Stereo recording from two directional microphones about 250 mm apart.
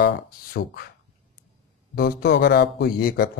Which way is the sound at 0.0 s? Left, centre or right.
Left.